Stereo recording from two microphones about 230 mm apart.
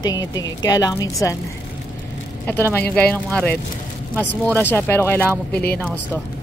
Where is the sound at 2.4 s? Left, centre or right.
Centre.